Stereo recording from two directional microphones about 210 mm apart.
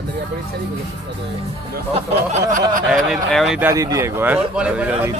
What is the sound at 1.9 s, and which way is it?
Speech, 30° right (ahead or behind).